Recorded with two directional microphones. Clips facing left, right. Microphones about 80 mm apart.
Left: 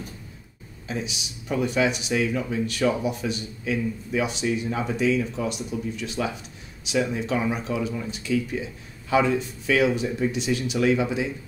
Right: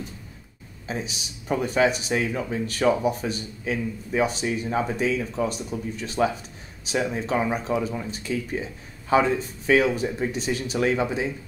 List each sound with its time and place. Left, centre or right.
0.8 s speech: right